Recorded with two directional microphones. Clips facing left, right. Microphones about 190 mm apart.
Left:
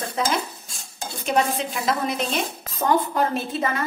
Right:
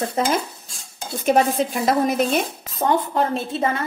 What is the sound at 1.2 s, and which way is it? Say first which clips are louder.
A woman's voice: right 5 dB; 45° right (ahead or behind).